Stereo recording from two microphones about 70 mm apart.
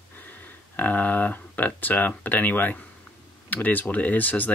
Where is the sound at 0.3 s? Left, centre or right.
Left.